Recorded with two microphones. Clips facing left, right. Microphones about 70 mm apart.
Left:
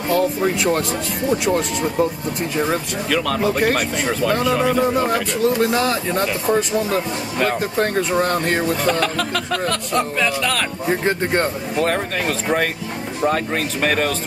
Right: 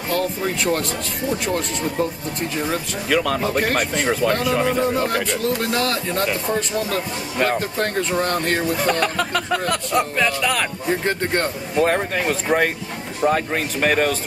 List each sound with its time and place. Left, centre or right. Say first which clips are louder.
0.1 s speech: left 4 dB; centre
3.1 s speech: even; centre
11.1 s speech: left 4 dB; centre
11.8 s speech: right 2 dB; centre